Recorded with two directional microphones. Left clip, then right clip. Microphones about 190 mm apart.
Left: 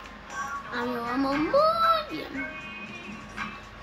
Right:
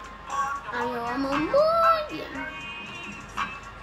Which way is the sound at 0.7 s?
Centre (ahead or behind).